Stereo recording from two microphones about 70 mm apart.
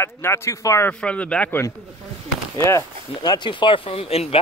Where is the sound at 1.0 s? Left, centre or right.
Centre.